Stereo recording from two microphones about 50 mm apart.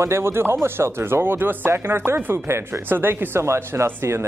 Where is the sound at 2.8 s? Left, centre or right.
Right.